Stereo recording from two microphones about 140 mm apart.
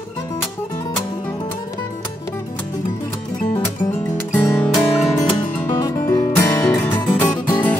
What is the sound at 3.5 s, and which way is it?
Music, 15° left (ahead or behind).